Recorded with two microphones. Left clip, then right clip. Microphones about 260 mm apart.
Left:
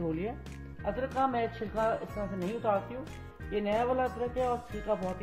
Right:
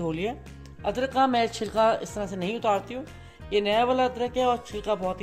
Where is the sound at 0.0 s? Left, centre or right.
Right.